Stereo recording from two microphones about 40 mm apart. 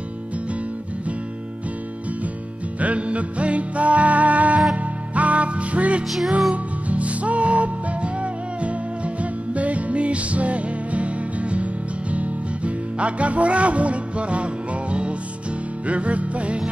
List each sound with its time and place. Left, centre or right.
2.8 s music: right
6.0 s music: centre
6.5 s music: right